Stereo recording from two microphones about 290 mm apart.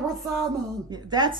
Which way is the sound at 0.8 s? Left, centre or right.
Centre.